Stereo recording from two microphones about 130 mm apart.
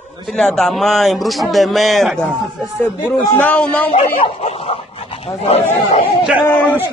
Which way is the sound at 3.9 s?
45° left (ahead or behind).